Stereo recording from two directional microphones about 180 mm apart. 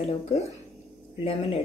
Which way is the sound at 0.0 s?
35° left (ahead or behind).